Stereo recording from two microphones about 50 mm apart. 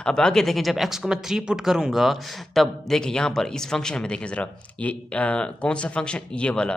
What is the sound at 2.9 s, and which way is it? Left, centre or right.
Speech, centre.